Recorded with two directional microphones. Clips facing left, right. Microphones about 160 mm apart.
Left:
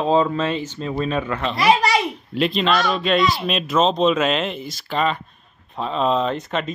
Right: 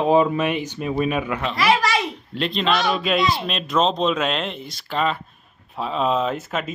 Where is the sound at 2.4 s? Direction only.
Centre (ahead or behind).